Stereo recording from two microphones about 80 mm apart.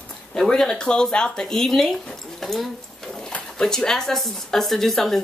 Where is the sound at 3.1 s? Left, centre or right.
Centre.